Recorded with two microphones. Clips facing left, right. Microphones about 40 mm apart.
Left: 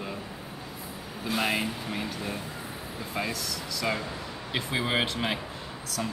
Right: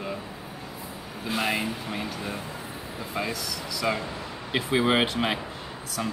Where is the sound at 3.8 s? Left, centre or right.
Centre.